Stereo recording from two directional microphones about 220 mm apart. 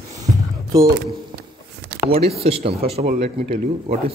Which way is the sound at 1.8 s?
50° right (ahead or behind).